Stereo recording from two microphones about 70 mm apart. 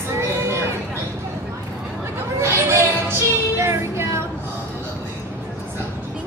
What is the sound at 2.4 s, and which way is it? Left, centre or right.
Music, right.